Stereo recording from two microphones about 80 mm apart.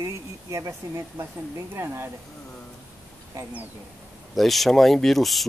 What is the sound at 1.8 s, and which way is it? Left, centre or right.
Speech, right.